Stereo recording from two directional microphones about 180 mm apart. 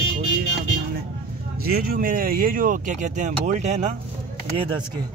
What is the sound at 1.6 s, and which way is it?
Speech, 55° right (ahead or behind).